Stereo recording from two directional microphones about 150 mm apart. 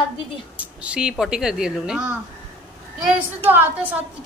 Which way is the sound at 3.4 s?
15° right (ahead or behind).